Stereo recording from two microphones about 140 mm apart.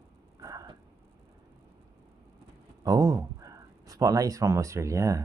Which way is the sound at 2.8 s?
25° right (ahead or behind).